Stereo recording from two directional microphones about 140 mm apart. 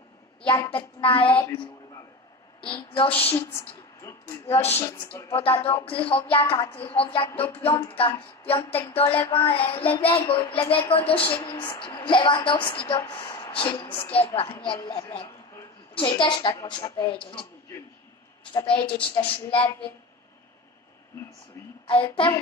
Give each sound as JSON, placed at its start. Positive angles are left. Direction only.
{"t": 0.7, "sound": "a woman's voice", "side_deg": 40}
{"t": 2.6, "sound": "a woman's voice", "side_deg": 35}
{"t": 4.0, "sound": "a sound", "side_deg": 20}
{"t": 4.5, "sound": "a woman's voice", "side_deg": 45}
{"t": 9.2, "sound": "child singing", "side_deg": 15}
{"t": 9.5, "sound": "a woman's voice", "side_deg": 45}
{"t": 18.7, "sound": "a woman's voice", "side_deg": 40}
{"t": 21.8, "sound": "a woman's voice", "side_deg": 40}